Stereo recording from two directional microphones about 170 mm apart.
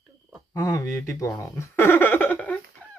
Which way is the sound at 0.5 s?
20° left (ahead or behind).